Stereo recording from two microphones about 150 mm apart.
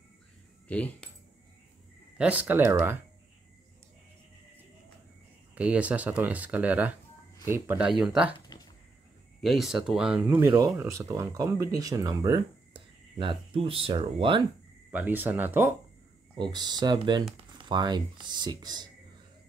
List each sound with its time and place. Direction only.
0.7 s speech: 10° left (ahead or behind)
2.1 s speech: 10° right (ahead or behind)
5.5 s speech: 10° right (ahead or behind)
8.0 s speech: 5° right (ahead or behind)
9.4 s speech: centre (ahead or behind)
10.5 s speech: 20° right (ahead or behind)
14.9 s speech: 10° right (ahead or behind)
16.3 s speech: 30° right (ahead or behind)